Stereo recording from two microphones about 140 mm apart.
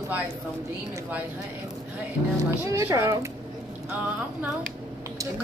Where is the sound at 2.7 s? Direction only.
20° right (ahead or behind).